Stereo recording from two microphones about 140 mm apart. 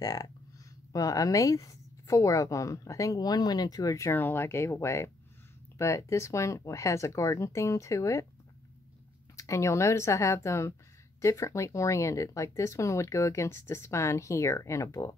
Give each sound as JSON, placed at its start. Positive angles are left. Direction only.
{"t": 0.0, "sound": "a woman's voice", "side_deg": 25}
{"t": 9.4, "sound": "a woman's voice", "side_deg": 20}